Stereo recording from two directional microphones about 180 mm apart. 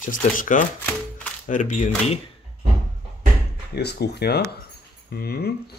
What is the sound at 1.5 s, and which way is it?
Speech, 45° left (ahead or behind).